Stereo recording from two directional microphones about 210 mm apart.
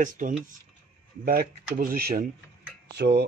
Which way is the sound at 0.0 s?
40° right (ahead or behind).